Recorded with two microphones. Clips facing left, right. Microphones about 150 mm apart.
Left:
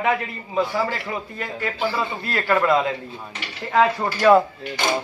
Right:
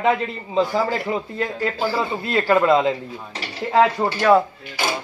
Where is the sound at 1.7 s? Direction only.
35° right (ahead or behind).